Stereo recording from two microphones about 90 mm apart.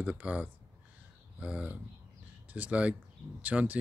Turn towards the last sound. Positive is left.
turn(degrees=-15)  # may be behind; listen again after turning